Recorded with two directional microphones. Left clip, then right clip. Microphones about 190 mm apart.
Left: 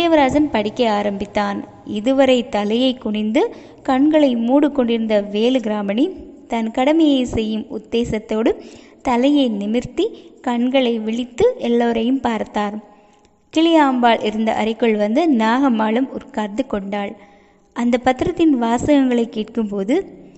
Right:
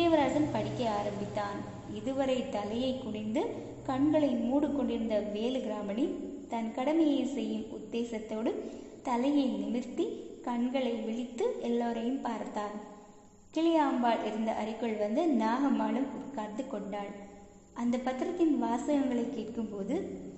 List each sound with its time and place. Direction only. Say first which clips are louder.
0.0 s a woman's voice: left 13 dB; 40° left (ahead or behind)